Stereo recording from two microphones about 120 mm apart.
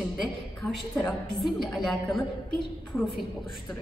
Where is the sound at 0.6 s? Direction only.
15° left (ahead or behind).